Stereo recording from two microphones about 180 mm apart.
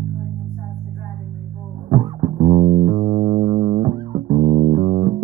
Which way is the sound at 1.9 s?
35° right (ahead or behind).